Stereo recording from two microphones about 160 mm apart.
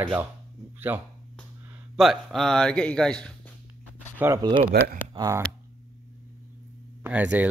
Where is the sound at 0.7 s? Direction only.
10° right (ahead or behind).